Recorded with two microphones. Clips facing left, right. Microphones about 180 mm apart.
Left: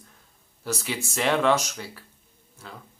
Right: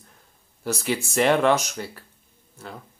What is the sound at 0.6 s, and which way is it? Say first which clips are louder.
Speech: right 5 dB; 55° right (ahead or behind).